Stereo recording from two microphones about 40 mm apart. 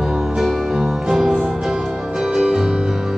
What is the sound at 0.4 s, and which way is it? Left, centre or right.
Music, centre.